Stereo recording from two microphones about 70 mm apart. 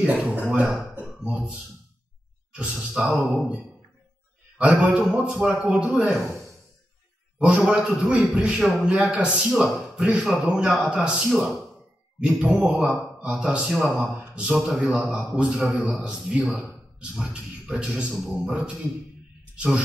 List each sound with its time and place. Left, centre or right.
0.0 s a man's voice: centre
0.9 s a sound: centre
2.5 s a man's voice: centre
11.2 s speech: centre
12.2 s a man's voice: centre
16.4 s speech: centre
17.0 s a man's voice: centre